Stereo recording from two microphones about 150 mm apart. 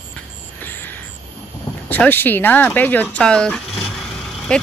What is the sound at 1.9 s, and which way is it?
Speech, 10° left (ahead or behind).